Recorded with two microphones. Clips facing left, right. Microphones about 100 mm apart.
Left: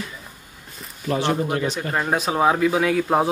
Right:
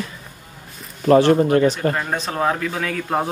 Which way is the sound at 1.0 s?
50° right (ahead or behind).